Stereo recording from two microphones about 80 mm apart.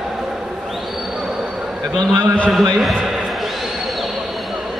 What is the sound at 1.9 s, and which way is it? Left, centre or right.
Speech, right.